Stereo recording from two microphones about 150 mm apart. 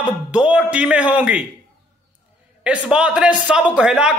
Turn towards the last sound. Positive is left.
turn(degrees=-5)  # may be behind; listen again after turning